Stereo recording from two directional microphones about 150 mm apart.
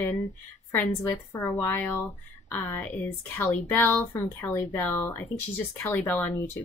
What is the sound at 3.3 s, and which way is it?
Speech, 15° left (ahead or behind).